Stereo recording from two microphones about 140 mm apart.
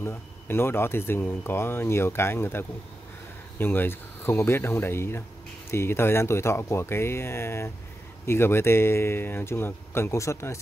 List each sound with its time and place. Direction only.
0.0 s speech: 15° left (ahead or behind)